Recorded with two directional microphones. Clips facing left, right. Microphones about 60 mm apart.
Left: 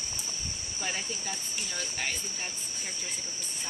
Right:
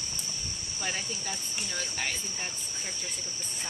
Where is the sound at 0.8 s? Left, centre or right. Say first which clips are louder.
Even; centre.